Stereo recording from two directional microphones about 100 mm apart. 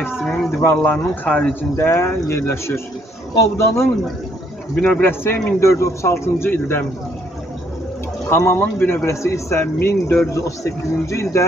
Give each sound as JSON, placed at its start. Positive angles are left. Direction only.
{"t": 0.5, "sound": "a man's voice", "side_deg": 25}
{"t": 4.8, "sound": "a man's voice", "side_deg": 20}
{"t": 8.3, "sound": "a man's voice", "side_deg": 25}